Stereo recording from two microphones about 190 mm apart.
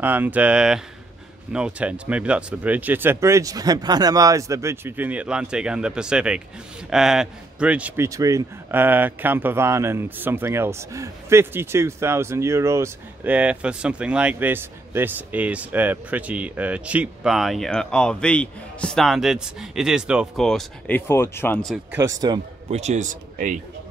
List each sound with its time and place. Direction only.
0.0 s a man's voice: 10° right (ahead or behind); by 21.7 s 5° left (ahead or behind)
21.9 s a man's voice: 15° right (ahead or behind)
22.7 s a man's voice: 35° right (ahead or behind)